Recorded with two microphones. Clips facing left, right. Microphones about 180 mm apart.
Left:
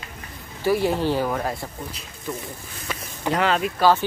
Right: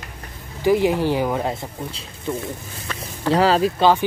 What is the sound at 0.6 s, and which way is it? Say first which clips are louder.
Speech: right 3 dB; 15° right (ahead or behind).